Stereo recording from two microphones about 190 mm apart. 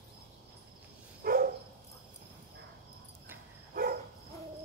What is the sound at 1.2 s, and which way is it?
Dog, 50° right (ahead or behind).